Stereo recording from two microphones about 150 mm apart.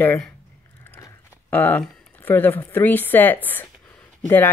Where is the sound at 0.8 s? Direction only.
20° left (ahead or behind).